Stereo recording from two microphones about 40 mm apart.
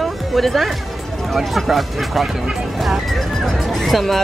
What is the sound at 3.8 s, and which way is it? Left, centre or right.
Speech, centre.